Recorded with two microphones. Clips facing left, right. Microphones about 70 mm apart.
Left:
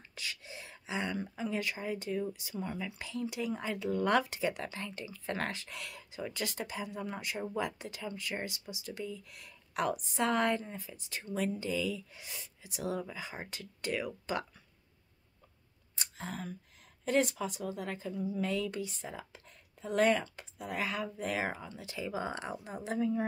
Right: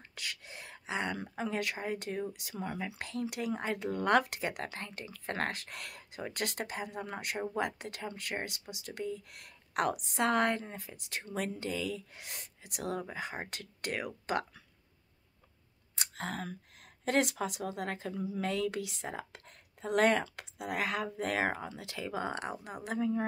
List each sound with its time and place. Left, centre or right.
0.1 s gasp: right
1.3 s speech: right
2.8 s speech: right
16.0 s speech: right